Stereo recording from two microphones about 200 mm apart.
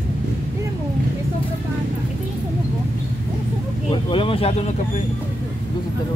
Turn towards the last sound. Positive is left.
turn(degrees=25)  # may be behind; listen again after turning